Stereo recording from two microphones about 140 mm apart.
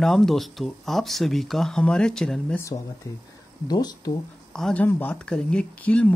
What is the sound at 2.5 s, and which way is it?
Speech, 25° left (ahead or behind).